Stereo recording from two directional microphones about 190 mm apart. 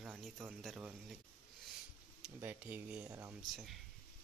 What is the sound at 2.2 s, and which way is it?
Speech, 10° right (ahead or behind).